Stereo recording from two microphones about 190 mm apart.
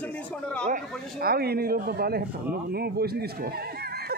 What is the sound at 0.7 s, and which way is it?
Speech, 50° right (ahead or behind).